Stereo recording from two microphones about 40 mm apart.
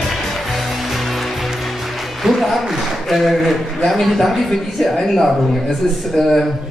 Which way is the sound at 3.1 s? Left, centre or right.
Centre.